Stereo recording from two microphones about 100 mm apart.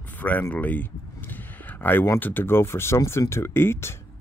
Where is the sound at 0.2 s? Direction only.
20° left (ahead or behind).